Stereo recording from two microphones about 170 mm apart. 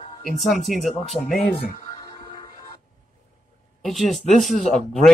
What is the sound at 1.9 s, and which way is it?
Music, 25° left (ahead or behind).